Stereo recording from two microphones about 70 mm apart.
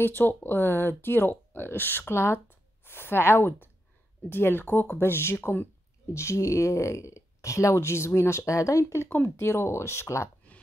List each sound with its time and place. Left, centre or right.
0.0 s speech: left
9.1 s speech: left